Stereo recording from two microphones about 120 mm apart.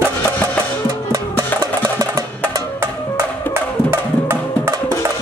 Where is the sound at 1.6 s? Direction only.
30° right (ahead or behind).